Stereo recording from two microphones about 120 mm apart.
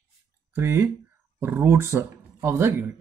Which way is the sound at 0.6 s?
20° right (ahead or behind).